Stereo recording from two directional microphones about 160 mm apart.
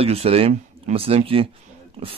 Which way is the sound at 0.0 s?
40° right (ahead or behind).